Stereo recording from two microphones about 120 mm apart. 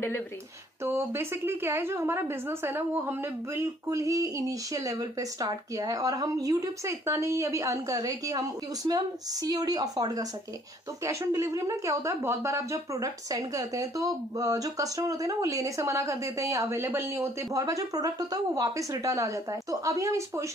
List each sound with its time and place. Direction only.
0.8 s a woman's voice: 20° right (ahead or behind)